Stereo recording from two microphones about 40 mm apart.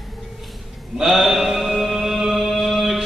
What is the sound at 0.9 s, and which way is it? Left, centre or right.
Mantra, centre.